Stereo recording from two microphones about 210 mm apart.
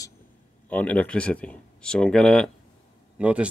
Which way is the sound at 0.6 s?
5° left (ahead or behind).